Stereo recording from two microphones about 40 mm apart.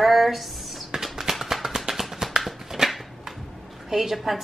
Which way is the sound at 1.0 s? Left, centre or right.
Centre.